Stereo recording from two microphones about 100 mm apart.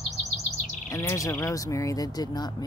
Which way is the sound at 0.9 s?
30° left (ahead or behind).